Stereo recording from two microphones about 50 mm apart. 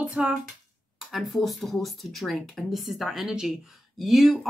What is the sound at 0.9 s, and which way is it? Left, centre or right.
Speech, centre.